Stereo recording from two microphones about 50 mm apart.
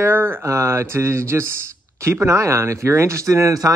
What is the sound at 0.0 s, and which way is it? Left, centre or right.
Speech, right.